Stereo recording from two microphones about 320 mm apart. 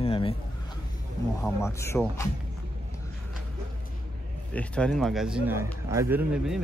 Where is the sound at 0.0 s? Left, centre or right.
Centre.